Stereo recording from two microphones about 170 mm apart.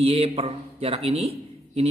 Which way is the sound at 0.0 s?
35° right (ahead or behind).